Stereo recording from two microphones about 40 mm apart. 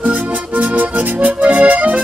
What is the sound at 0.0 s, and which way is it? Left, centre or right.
Accordion, right.